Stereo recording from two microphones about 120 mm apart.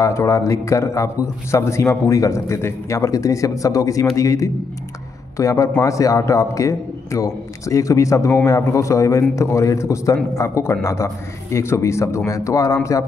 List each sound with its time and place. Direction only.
0.0 s a man's voice: 25° left (ahead or behind)